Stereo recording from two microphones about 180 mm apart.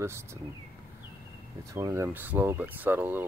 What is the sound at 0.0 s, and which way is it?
Speech, 15° right (ahead or behind).